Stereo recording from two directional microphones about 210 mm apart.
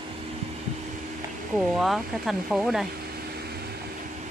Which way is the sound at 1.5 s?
Centre (ahead or behind).